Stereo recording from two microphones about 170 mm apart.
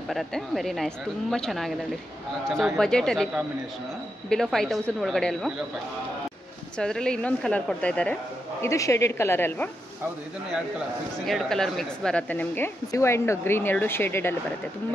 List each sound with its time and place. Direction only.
0.1 s a woman's voice: centre (ahead or behind)
6.8 s a woman's voice: 5° left (ahead or behind)
8.6 s a woman's voice: 20° left (ahead or behind)
11.2 s a woman's voice: centre (ahead or behind)